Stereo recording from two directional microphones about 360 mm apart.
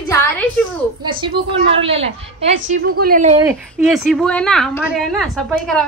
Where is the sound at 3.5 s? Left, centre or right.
Centre.